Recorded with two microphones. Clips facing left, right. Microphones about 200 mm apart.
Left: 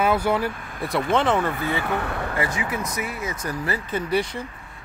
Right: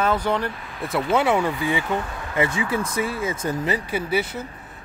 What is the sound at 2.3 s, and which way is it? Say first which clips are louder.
Speech: right 7 dB; 25° right (ahead or behind).